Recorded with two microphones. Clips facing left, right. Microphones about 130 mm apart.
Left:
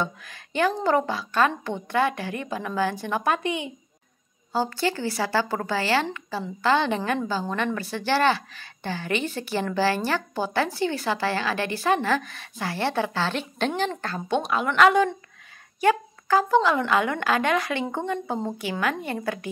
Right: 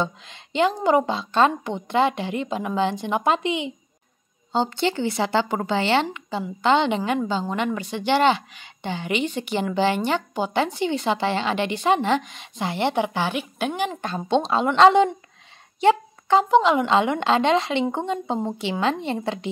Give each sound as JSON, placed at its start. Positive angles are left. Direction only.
{"t": 0.0, "sound": "a woman's voice", "side_deg": -20}
{"t": 7.0, "sound": "a woman's voice", "side_deg": -10}